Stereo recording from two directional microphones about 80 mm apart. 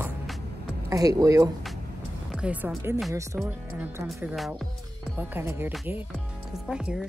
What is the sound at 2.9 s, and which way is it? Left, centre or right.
Speech, right.